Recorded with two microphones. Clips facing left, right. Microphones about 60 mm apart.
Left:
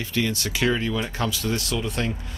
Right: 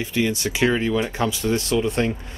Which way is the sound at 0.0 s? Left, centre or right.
Centre.